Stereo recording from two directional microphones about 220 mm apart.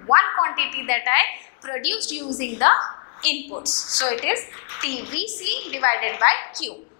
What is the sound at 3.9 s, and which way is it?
A woman's voice, 10° left (ahead or behind).